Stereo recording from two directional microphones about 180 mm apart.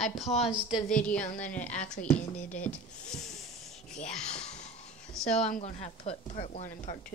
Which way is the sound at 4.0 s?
40° left (ahead or behind).